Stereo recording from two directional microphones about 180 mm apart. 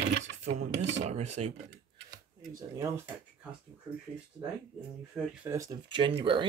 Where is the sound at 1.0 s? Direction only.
40° right (ahead or behind).